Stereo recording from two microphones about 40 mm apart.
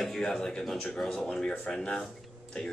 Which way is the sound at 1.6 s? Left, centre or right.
Left.